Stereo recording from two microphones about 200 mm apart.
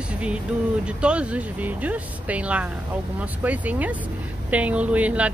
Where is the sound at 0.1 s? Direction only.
5° right (ahead or behind).